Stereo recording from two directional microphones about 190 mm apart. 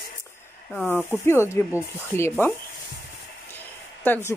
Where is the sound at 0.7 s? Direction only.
10° left (ahead or behind).